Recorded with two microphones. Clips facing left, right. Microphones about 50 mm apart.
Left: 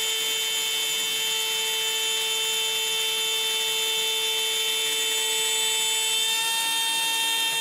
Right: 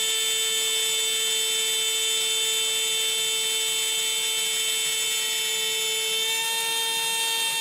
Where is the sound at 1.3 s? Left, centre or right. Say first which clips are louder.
Even; centre.